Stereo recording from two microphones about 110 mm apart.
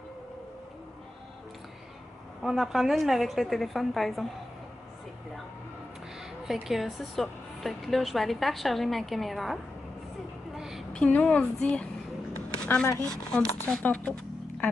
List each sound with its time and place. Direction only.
2.4 s speech: centre (ahead or behind)
6.4 s speech: centre (ahead or behind)
10.5 s a sound: 5° right (ahead or behind)
10.9 s speech: 10° left (ahead or behind)
12.5 s a sound: 10° left (ahead or behind)
13.0 s speech: 5° left (ahead or behind)